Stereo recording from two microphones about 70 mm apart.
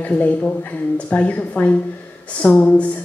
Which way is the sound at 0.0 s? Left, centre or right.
Left.